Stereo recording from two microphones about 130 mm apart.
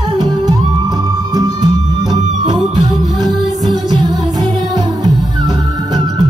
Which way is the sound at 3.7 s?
35° right (ahead or behind).